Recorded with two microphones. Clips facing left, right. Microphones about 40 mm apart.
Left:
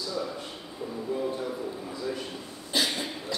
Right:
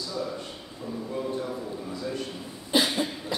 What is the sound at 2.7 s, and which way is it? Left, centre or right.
Cough, centre.